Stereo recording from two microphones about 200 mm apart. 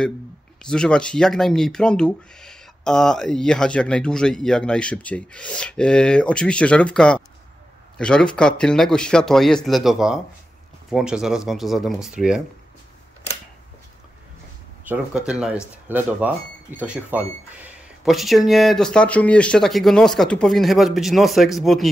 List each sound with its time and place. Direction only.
0.6 s speech: 5° left (ahead or behind)
14.9 s speech: 5° right (ahead or behind)